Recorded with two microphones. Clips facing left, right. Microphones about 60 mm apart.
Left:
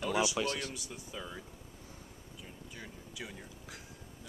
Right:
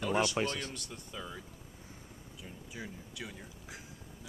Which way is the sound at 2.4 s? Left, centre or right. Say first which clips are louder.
Right 4 dB; centre.